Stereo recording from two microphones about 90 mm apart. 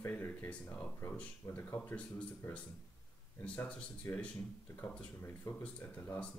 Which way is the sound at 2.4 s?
25° left (ahead or behind).